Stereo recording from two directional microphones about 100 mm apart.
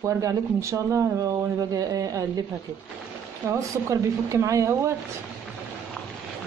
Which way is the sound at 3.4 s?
30° right (ahead or behind).